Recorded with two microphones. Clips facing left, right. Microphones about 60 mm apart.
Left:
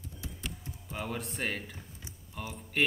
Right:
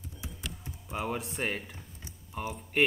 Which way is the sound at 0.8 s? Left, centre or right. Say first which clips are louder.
Right 4 dB; centre.